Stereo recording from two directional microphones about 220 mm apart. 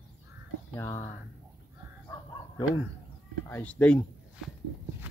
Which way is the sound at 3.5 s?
5° left (ahead or behind).